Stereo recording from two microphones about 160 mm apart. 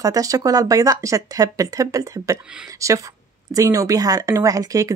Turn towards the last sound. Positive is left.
turn(degrees=-20)  # may be behind; listen again after turning